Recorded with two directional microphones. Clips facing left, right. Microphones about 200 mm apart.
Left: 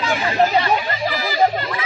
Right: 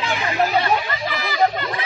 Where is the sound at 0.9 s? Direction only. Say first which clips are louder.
Left 3 dB; 25° left (ahead or behind).